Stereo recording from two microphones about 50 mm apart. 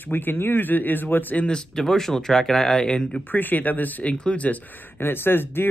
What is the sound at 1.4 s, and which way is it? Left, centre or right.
Speech, centre.